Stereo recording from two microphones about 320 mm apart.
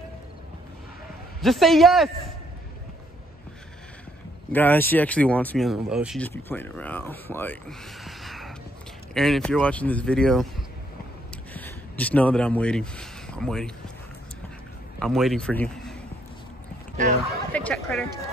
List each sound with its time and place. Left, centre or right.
1.4 s speech: centre
4.5 s speech: centre
8.0 s a sound: centre
9.1 s speech: centre
11.5 s speech: centre
15.0 s a man's voice: centre
16.9 s speech: right
17.5 s speech: centre